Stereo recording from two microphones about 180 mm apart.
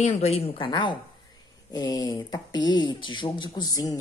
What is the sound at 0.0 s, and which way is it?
Speech, 35° left (ahead or behind).